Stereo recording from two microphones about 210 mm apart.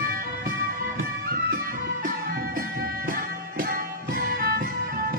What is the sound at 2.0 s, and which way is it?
Music, 40° right (ahead or behind).